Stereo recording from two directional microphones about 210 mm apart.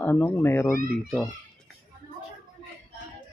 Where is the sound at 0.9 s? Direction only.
Centre (ahead or behind).